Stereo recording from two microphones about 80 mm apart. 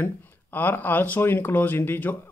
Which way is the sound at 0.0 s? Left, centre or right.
Left.